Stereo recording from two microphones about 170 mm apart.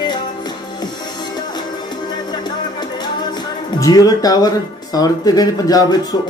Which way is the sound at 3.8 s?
20° left (ahead or behind).